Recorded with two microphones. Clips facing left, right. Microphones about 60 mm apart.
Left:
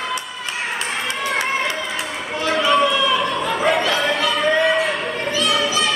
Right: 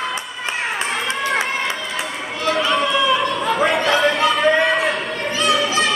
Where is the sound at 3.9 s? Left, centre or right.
Centre.